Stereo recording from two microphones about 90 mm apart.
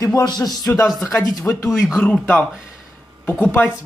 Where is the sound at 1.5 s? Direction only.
30° left (ahead or behind).